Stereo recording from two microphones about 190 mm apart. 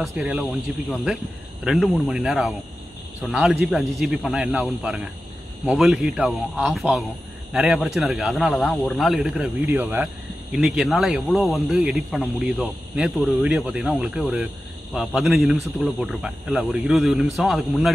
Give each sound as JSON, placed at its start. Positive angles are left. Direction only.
{"t": 0.0, "sound": "a man's voice", "side_deg": -5}